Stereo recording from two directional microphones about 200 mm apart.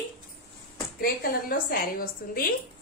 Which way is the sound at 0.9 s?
45° left (ahead or behind).